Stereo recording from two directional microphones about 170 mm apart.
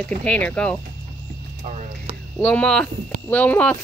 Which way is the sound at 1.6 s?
45° right (ahead or behind).